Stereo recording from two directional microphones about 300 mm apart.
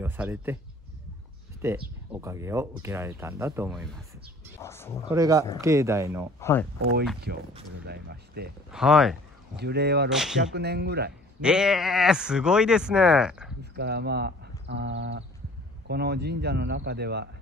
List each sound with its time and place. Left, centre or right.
0.0 s speech: centre
1.6 s speech: centre
4.6 s speech: centre
5.1 s speech: centre
7.8 s a man's voice: right
8.6 s speech: centre
9.6 s a man's voice: right
10.0 s speech: centre
10.5 s a man's voice: right
11.4 s speech: centre
13.7 s a man's voice: right